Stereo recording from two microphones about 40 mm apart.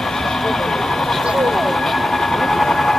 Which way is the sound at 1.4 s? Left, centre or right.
Centre.